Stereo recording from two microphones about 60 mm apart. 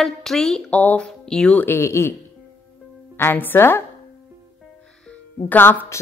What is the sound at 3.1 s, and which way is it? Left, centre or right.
Speech, left.